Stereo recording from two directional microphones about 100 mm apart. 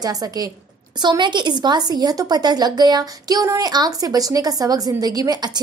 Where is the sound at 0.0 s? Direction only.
40° right (ahead or behind).